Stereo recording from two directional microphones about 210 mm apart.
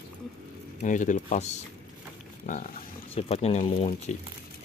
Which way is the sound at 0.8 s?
35° left (ahead or behind).